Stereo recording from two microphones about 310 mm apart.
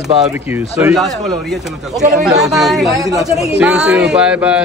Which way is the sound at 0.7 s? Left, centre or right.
Centre.